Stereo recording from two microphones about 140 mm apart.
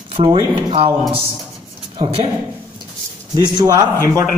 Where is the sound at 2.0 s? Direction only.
45° right (ahead or behind).